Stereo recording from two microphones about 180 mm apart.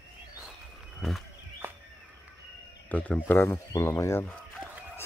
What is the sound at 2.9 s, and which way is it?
Speech, 10° left (ahead or behind).